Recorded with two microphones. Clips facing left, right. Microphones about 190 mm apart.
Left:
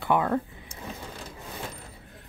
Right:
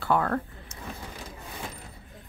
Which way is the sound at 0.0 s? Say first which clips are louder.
Left 1 dB; 15° left (ahead or behind).